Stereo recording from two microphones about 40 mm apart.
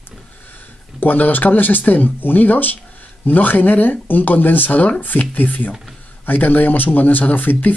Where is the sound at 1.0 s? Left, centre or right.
Left.